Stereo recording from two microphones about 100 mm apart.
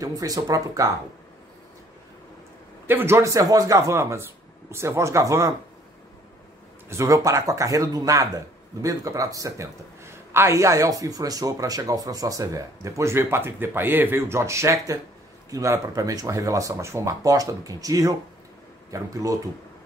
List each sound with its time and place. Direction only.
0.0 s a man's voice: 35° right (ahead or behind)
2.9 s speech: 25° right (ahead or behind)
6.9 s a man's voice: 30° right (ahead or behind)